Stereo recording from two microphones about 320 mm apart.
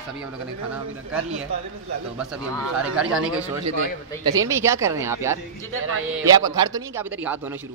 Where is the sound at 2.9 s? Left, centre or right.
Centre.